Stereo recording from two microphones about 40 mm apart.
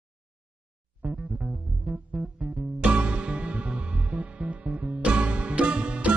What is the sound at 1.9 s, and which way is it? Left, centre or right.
Music, right.